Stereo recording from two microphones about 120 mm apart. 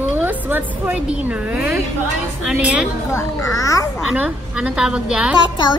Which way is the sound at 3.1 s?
25° left (ahead or behind).